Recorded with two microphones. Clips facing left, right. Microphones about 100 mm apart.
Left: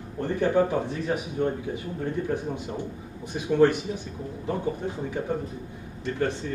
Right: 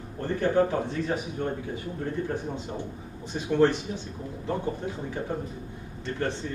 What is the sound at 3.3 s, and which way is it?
Speech, 15° left (ahead or behind).